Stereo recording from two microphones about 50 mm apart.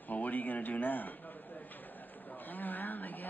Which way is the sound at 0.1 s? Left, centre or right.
Left.